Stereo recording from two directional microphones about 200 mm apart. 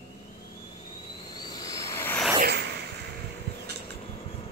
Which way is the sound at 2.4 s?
55° right (ahead or behind).